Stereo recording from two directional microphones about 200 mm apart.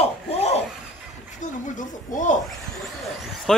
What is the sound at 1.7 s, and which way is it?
Speech, 40° left (ahead or behind).